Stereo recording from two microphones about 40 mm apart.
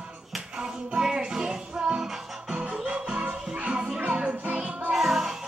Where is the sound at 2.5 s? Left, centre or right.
Right.